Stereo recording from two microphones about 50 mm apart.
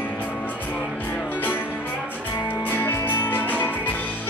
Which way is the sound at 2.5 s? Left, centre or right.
Left.